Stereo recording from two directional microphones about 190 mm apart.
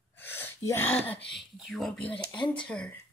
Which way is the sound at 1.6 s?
Centre (ahead or behind).